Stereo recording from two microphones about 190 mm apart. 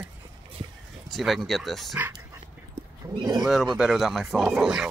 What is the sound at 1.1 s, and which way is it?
Speech, centre (ahead or behind).